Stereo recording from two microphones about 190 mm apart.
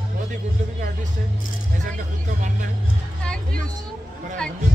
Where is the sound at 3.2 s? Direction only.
5° left (ahead or behind).